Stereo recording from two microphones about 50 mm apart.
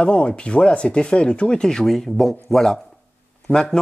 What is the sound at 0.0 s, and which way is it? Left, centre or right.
A man's voice, left.